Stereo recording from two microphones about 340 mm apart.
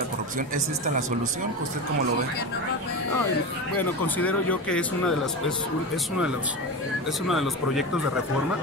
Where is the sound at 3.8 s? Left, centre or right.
Centre.